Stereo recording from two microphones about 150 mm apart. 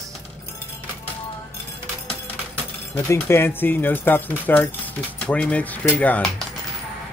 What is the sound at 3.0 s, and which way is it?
Speech, 15° left (ahead or behind).